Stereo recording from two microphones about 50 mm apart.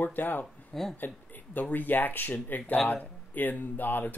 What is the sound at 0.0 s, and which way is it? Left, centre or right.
Speech, left.